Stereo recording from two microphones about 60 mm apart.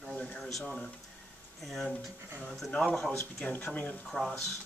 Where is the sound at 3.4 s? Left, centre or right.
Left.